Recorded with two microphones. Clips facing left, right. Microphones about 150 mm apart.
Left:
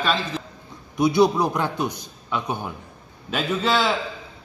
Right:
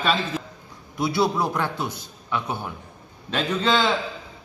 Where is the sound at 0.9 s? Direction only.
20° left (ahead or behind).